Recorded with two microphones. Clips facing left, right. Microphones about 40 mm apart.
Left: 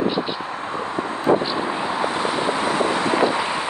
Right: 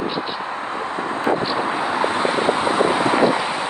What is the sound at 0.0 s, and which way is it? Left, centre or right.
Vehicle, centre.